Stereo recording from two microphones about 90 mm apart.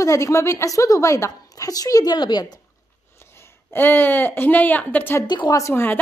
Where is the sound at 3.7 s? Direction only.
20° left (ahead or behind).